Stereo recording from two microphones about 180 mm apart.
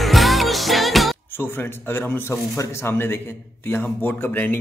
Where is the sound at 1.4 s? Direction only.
10° left (ahead or behind).